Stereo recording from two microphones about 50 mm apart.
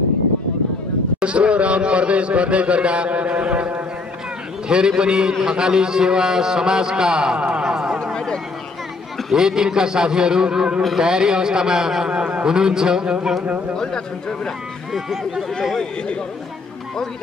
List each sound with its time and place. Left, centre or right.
1.2 s a man's voice: right
9.3 s a man's voice: centre
13.7 s a man's voice: centre
14.9 s a man's voice: centre